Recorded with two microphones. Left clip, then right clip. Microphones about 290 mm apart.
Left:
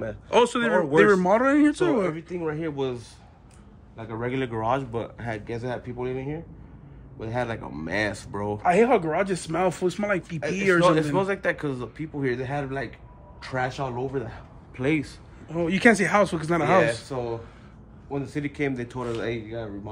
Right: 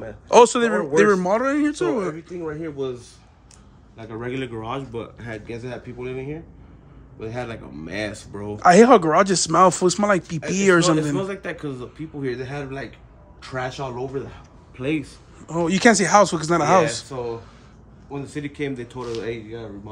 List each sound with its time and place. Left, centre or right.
0.3 s speech: centre
2.2 s speech: left
3.9 s speech: centre
8.6 s speech: right
11.1 s a man's voice: centre
15.4 s speech: centre
17.1 s speech: centre